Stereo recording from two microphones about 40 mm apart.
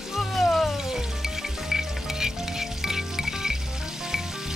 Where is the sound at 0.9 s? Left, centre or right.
Centre.